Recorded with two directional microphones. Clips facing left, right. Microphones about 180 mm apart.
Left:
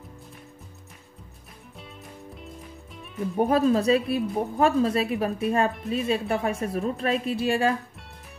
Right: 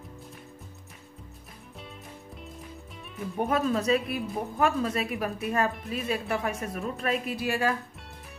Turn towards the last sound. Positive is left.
turn(degrees=25)  # may be behind; listen again after turning